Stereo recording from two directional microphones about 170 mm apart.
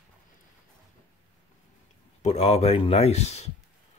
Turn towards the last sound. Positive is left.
turn(degrees=40)  # may be behind; listen again after turning